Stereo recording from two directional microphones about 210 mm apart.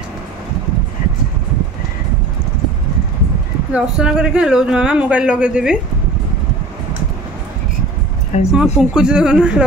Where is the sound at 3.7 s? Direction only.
5° right (ahead or behind).